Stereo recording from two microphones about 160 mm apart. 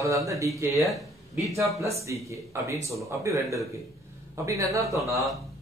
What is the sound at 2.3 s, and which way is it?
A man's voice, 20° right (ahead or behind).